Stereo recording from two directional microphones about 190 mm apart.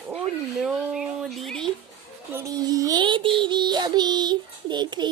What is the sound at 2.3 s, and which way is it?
Child singing, 15° right (ahead or behind).